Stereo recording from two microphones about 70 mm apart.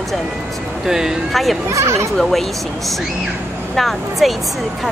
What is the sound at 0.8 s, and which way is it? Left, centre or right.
Speech, centre.